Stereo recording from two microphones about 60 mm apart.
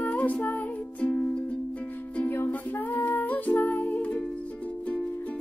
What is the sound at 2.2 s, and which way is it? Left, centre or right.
Music, left.